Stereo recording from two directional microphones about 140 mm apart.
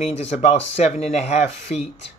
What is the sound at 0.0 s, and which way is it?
Speech, 50° left (ahead or behind).